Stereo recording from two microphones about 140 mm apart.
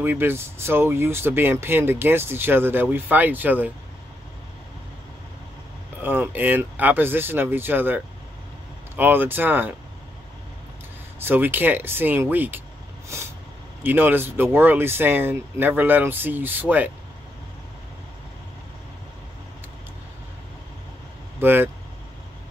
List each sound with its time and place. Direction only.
0.0 s speech: 15° right (ahead or behind)
6.0 s speech: 15° right (ahead or behind)
11.1 s speech: 15° right (ahead or behind)
13.1 s vehicle: 20° right (ahead or behind)
13.8 s speech: 15° right (ahead or behind)
21.4 s speech: 15° right (ahead or behind)